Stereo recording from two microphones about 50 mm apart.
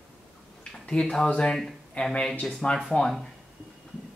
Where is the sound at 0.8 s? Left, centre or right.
Centre.